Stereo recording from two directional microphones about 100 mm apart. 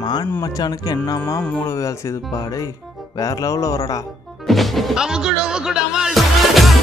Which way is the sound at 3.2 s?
35° left (ahead or behind).